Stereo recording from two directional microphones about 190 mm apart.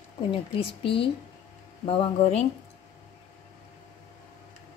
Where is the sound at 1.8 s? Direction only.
30° left (ahead or behind).